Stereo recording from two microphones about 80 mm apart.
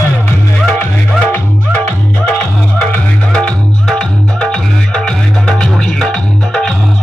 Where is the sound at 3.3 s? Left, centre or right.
Centre.